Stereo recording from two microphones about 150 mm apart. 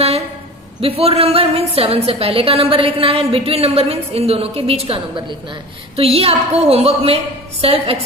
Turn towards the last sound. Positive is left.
turn(degrees=-40)  # may be behind; listen again after turning